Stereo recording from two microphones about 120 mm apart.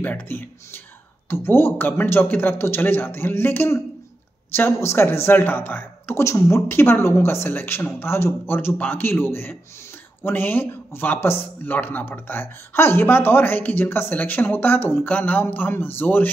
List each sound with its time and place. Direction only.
0.0 s speech: 15° left (ahead or behind)